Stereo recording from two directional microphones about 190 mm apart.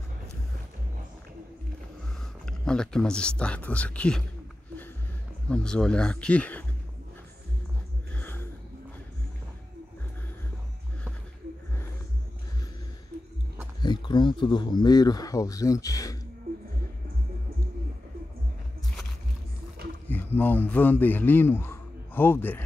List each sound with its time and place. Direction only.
2.4 s speech: 5° left (ahead or behind)
5.5 s speech: 5° left (ahead or behind)
8.1 s a sound: 10° left (ahead or behind)
13.7 s speech: 25° left (ahead or behind)
20.1 s a man's voice: 10° left (ahead or behind)